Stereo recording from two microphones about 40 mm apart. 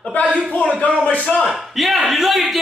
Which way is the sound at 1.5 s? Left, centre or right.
Centre.